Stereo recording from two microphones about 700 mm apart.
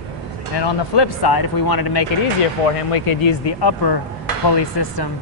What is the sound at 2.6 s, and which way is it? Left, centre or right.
Speech, left.